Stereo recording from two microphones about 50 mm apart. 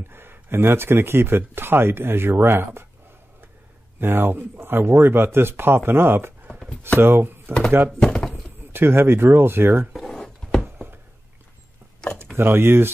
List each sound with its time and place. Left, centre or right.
0.1 s speech: right
4.0 s speech: right
8.0 s bird: centre
8.7 s speech: right
9.9 s drawer open or close: centre
12.4 s speech: right